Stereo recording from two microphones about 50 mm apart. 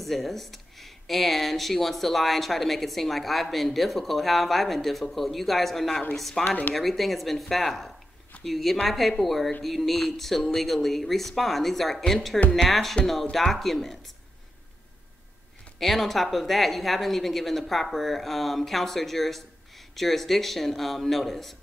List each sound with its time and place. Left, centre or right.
0.0 s speech: centre
6.4 s speech: left
6.7 s speech: centre
15.8 s speech: centre